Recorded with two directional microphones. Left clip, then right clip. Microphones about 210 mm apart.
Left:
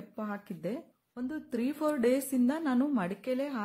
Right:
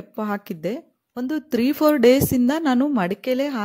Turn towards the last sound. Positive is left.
turn(degrees=-35)  # may be behind; listen again after turning